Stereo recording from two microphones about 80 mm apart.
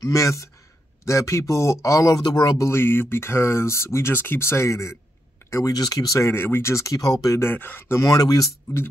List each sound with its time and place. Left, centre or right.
0.0 s speech: left
2.2 s speech: left
2.5 s speech: left
7.3 s speech: left
8.0 s speech: left